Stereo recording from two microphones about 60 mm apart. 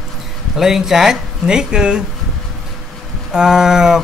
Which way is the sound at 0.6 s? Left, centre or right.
Centre.